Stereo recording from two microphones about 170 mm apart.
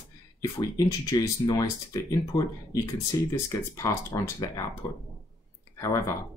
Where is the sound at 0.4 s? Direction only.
20° left (ahead or behind).